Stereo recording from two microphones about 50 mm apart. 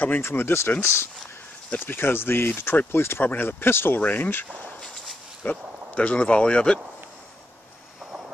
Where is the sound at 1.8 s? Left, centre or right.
Left.